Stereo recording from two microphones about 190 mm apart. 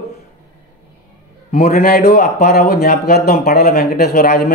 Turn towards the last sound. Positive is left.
turn(degrees=55)  # may be behind; listen again after turning